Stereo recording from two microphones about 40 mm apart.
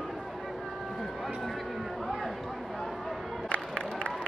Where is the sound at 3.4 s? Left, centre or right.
Left.